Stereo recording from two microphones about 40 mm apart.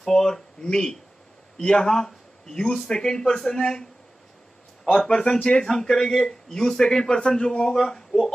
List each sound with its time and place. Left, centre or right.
0.0 s speech: centre
5.0 s speech: centre
5.7 s speech: centre